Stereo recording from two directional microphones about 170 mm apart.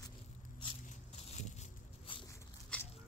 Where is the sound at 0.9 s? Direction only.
40° left (ahead or behind).